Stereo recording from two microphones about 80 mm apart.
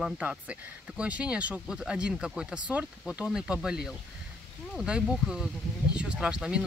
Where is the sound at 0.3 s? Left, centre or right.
Centre.